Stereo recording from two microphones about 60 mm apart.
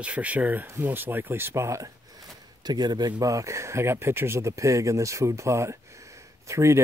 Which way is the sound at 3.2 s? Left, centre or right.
Right.